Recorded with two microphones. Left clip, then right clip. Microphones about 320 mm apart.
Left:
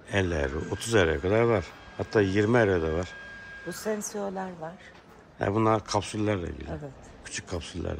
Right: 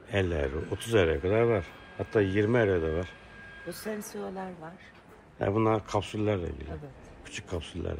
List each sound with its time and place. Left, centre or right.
0.1 s speech: centre
4.1 s a woman's voice: left
5.4 s speech: centre